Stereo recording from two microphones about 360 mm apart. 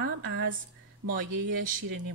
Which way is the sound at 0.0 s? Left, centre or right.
Right.